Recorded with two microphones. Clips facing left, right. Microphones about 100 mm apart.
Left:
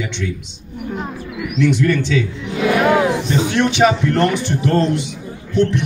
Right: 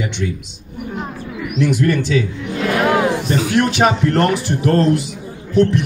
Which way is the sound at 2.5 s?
Centre (ahead or behind).